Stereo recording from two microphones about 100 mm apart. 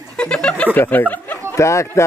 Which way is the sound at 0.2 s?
10° left (ahead or behind).